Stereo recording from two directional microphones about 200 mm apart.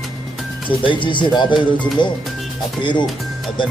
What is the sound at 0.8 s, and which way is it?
Speech, 25° left (ahead or behind).